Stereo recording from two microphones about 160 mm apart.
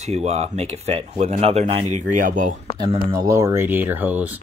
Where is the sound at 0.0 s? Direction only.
45° right (ahead or behind).